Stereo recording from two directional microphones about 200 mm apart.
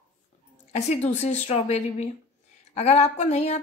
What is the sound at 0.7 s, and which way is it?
Speech, 35° left (ahead or behind).